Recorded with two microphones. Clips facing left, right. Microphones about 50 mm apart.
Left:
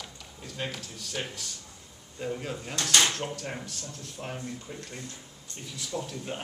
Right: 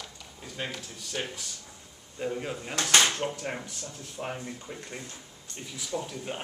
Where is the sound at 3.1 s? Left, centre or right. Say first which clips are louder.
Right 2 dB; centre.